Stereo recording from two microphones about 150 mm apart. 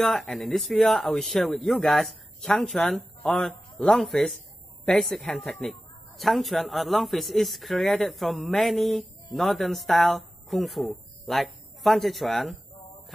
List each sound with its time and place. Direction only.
0.0 s speech: centre (ahead or behind)